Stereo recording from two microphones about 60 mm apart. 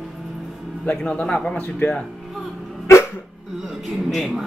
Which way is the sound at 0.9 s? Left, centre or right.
Centre.